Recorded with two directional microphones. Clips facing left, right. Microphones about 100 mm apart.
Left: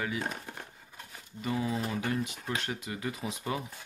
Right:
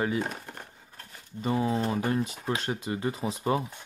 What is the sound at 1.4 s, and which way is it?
Speech, 30° right (ahead or behind).